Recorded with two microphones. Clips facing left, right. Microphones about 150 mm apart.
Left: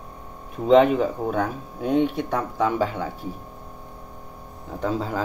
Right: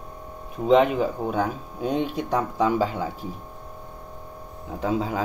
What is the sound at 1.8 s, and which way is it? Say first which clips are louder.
Speech: left 3 dB; 20° right (ahead or behind).